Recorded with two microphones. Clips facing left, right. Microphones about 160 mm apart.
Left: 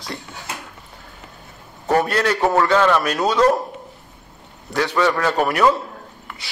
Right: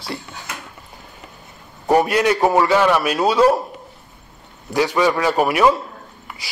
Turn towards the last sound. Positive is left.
turn(degrees=-10)  # may be behind; listen again after turning